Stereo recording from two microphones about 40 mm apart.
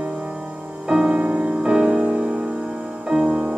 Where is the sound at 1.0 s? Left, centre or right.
Right.